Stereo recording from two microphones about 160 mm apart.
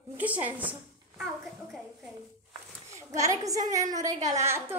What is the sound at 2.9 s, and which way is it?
A woman's voice, 20° right (ahead or behind).